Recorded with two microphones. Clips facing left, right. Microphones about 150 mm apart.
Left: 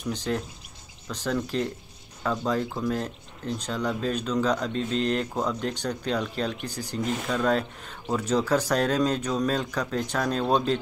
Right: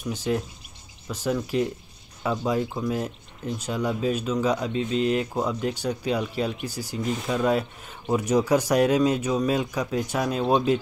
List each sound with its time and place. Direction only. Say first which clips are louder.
0.0 s speech: right 2 dB; 10° right (ahead or behind)